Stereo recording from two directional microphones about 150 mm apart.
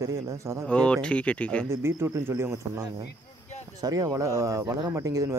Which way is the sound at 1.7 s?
15° right (ahead or behind).